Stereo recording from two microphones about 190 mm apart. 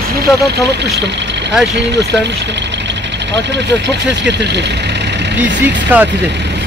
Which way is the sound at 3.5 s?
65° right (ahead or behind).